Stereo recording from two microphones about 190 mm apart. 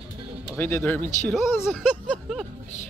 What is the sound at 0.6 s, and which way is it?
Speech, 10° left (ahead or behind).